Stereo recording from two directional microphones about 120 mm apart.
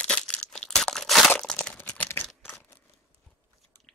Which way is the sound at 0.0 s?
10° left (ahead or behind).